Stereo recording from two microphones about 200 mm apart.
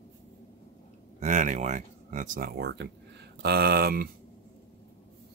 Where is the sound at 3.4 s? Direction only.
50° right (ahead or behind).